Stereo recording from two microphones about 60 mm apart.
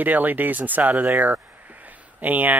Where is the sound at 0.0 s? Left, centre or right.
Right.